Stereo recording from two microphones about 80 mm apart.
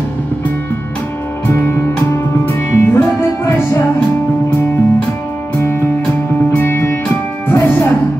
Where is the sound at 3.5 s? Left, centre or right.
Left.